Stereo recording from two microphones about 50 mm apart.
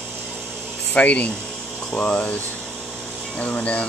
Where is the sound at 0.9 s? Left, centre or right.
Left.